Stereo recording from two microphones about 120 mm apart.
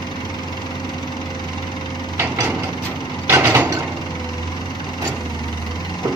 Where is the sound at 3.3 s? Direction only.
20° right (ahead or behind).